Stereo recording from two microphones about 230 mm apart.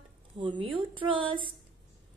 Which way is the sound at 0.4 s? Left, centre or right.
Right.